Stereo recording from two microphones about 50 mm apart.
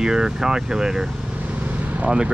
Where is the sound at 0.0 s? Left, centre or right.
Centre.